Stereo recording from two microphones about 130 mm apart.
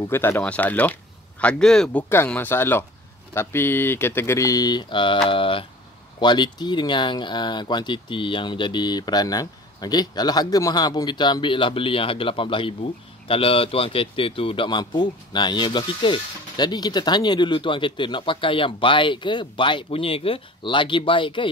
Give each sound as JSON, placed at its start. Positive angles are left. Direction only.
{"t": 0.0, "sound": "speech", "side_deg": 20}